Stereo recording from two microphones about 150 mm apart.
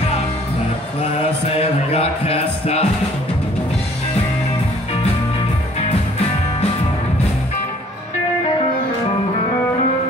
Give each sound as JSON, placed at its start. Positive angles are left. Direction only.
{"t": 1.1, "sound": "music", "side_deg": 45}